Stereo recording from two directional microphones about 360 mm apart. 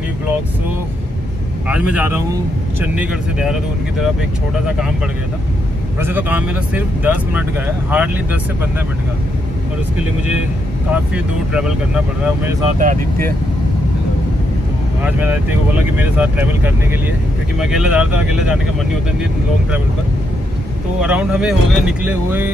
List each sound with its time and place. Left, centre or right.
1.7 s speech: centre
4.6 s speech: centre
5.9 s speech: centre
10.9 s speech: centre
12.7 s speech: right
15.0 s speech: centre
21.0 s speech: centre